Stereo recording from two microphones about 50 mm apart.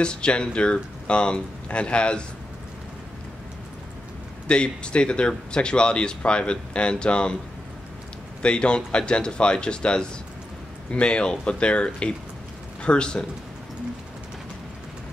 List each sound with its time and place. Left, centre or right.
0.0 s speech: centre
4.5 s speech: left
8.4 s speech: centre